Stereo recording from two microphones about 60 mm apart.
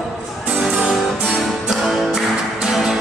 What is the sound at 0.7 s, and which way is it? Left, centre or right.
Music, centre.